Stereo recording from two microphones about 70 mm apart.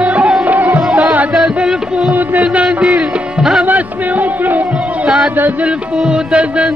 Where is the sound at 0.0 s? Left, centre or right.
Right.